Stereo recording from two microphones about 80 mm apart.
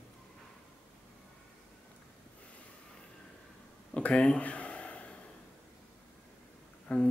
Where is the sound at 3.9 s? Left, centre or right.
Centre.